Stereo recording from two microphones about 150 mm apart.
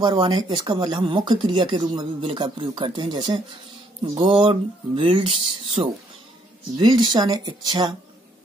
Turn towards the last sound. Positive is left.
turn(degrees=-30)  # may be behind; listen again after turning